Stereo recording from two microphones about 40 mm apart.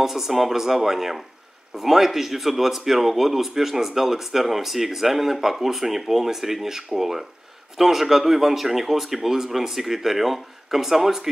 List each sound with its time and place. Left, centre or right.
0.0 s speech: centre